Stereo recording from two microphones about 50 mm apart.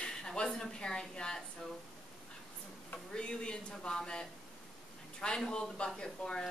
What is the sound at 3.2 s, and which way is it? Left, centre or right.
Speech, centre.